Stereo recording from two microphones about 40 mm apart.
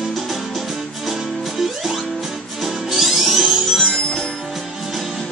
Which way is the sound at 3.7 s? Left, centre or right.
Centre.